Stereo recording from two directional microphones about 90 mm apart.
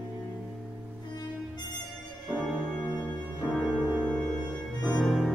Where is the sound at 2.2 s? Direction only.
10° left (ahead or behind).